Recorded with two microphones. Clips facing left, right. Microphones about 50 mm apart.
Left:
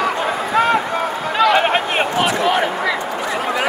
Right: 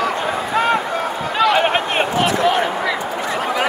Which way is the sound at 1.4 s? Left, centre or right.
Centre.